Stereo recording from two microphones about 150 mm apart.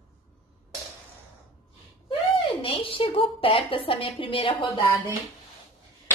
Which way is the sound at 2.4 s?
35° left (ahead or behind).